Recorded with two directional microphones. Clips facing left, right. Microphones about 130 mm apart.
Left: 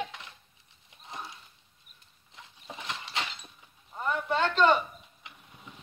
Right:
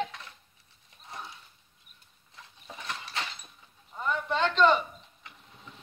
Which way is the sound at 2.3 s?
20° left (ahead or behind).